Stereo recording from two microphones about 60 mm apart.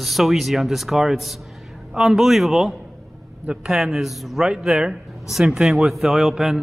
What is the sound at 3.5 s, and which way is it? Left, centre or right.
Speech, centre.